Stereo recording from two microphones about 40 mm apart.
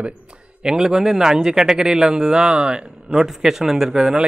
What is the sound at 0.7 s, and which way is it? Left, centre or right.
A man's voice, centre.